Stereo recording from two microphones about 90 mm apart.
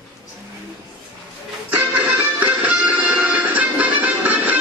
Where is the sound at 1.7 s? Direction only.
15° right (ahead or behind).